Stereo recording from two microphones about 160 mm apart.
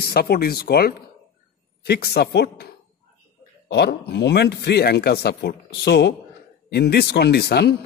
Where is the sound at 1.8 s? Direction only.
90° left.